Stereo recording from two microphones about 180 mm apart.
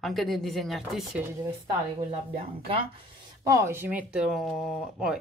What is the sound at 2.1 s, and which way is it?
Speech, 30° right (ahead or behind).